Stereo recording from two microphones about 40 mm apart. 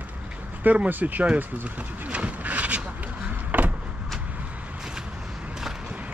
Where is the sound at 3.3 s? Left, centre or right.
Right.